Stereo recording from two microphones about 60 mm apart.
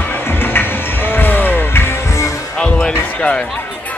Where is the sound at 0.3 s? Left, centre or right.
Left.